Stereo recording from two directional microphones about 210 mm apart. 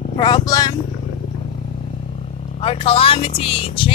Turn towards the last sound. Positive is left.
turn(degrees=25)  # may be behind; listen again after turning